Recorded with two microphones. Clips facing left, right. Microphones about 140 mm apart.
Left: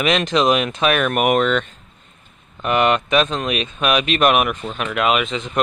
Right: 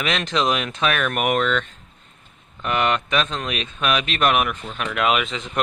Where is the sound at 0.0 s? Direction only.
15° left (ahead or behind).